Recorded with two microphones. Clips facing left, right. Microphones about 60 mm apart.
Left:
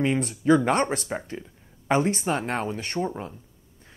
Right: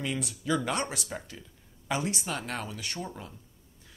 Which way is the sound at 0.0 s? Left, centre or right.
Left.